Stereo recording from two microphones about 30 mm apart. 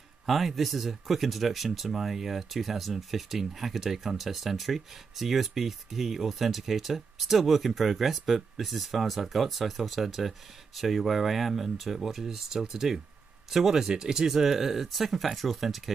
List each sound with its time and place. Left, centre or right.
0.3 s speech: centre